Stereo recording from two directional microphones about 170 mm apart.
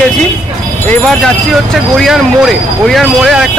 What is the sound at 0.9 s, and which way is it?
Speech, 5° left (ahead or behind).